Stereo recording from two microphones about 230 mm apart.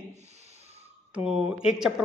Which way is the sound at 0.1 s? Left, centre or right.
Right.